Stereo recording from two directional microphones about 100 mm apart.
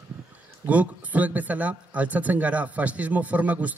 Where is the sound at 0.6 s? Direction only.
15° right (ahead or behind).